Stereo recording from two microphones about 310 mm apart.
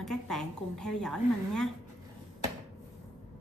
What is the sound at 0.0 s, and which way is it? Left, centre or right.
A woman's voice, centre.